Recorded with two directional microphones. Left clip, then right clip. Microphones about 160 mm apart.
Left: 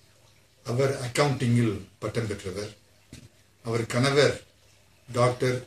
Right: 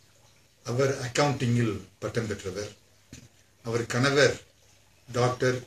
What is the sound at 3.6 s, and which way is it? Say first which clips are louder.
Speech: even; 20° right (ahead or behind).